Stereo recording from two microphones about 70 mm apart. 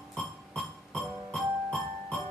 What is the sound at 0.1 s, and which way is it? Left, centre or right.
Music, centre.